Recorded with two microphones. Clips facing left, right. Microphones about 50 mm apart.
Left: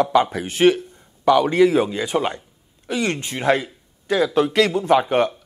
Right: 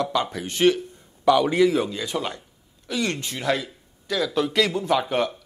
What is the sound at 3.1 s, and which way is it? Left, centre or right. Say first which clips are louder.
Speech: left 5 dB; left.